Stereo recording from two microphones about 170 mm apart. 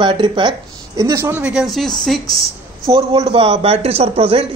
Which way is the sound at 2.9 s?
35° right (ahead or behind).